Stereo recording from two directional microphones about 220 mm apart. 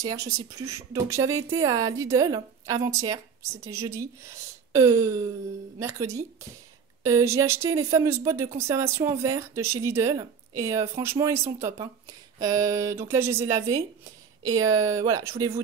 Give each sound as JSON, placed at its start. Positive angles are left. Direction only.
{"t": 0.0, "sound": "speech", "side_deg": -15}